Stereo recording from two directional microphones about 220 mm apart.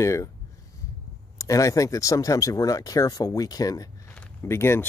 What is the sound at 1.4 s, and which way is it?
Speech, 15° left (ahead or behind).